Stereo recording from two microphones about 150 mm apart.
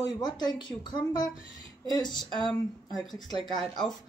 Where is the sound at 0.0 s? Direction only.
25° left (ahead or behind).